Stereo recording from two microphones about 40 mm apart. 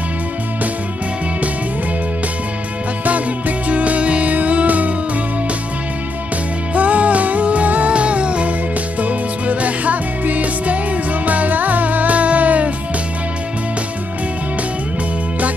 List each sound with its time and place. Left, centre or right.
3.1 s music: right
6.7 s music: right